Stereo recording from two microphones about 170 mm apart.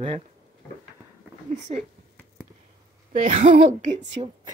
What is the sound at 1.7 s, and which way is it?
Speech, 35° right (ahead or behind).